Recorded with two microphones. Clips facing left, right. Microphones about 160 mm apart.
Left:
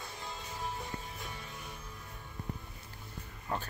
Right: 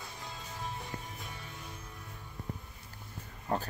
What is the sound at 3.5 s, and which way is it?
Speech, 40° right (ahead or behind).